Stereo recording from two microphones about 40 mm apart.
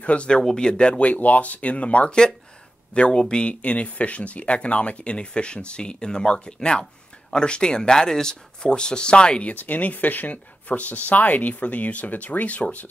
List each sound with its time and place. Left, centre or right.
0.0 s speech: left
0.4 s speech: centre
9.5 s speech: left